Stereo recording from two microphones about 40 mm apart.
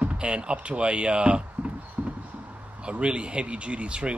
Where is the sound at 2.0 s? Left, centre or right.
Right.